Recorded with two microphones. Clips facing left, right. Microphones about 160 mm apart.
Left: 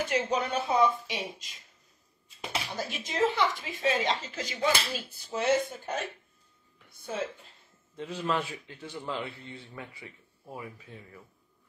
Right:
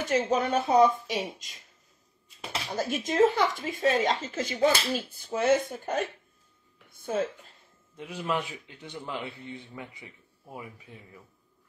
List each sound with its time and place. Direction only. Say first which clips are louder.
0.1 s speech: right 7 dB; 45° right (ahead or behind)
2.7 s speech: right 6 dB; 45° right (ahead or behind)
7.1 s speech: right 5 dB; 45° right (ahead or behind)
7.9 s a man's voice: even; 10° right (ahead or behind)